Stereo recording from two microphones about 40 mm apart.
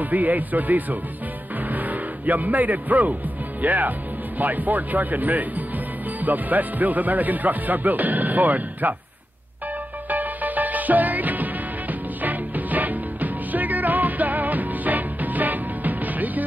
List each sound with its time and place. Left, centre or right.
0.0 s speech: right
10.0 s music: right